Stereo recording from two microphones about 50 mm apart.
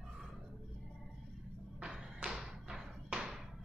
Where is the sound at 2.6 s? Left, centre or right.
Centre.